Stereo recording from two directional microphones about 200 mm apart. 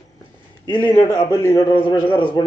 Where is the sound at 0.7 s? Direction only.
10° left (ahead or behind).